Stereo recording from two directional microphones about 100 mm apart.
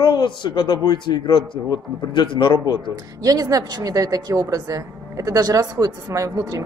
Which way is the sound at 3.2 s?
40° right (ahead or behind).